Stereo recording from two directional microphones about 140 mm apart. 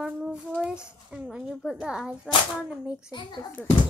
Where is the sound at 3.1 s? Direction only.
35° left (ahead or behind).